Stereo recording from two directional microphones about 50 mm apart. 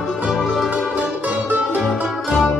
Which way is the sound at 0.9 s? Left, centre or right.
Right.